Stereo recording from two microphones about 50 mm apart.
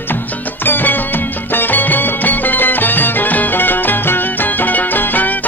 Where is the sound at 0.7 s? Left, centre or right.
Left.